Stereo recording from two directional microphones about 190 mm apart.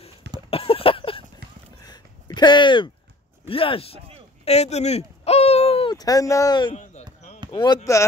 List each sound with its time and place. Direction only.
0.5 s a sound: 30° left (ahead or behind)
3.4 s speech: 30° left (ahead or behind)
5.9 s speech: 20° left (ahead or behind)
6.8 s basketball bounce: 35° left (ahead or behind)
7.5 s speech: 20° left (ahead or behind)